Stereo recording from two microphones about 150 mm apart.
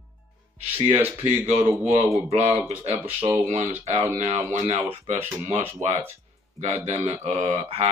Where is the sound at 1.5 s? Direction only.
50° right (ahead or behind).